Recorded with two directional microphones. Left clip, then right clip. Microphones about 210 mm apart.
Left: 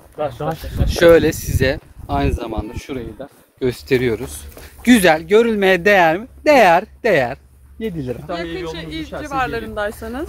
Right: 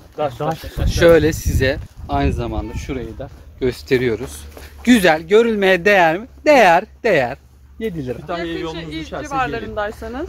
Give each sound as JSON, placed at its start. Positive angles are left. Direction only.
{"t": 0.2, "sound": "speech", "side_deg": -30}
{"t": 0.8, "sound": "speech", "side_deg": 30}
{"t": 8.5, "sound": "a man's voice", "side_deg": -55}
{"t": 8.7, "sound": "speech", "side_deg": 55}